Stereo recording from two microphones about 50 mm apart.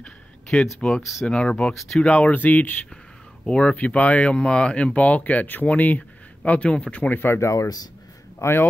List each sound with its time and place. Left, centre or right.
0.0 s a sound: centre
1.2 s speech: centre
1.7 s speech: centre
2.0 s speech: left
3.4 s speech: left
7.2 s speech: left
8.4 s speech: left